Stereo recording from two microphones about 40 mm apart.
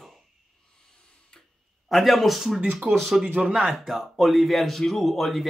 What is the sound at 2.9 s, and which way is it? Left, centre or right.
Speech, right.